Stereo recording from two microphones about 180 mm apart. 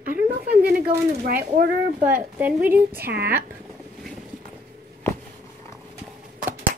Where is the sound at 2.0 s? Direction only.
10° right (ahead or behind).